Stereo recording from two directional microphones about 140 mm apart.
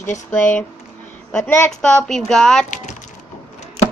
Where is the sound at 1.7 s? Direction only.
5° left (ahead or behind).